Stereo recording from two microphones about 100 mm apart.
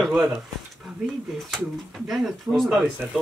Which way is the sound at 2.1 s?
Centre (ahead or behind).